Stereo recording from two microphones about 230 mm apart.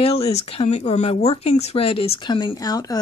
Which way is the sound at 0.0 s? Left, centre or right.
Left.